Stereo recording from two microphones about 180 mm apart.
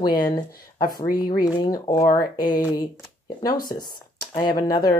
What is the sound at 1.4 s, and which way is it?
Speech, 20° left (ahead or behind).